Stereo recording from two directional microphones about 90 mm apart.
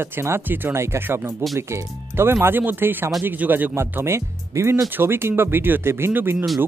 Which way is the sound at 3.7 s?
30° right (ahead or behind).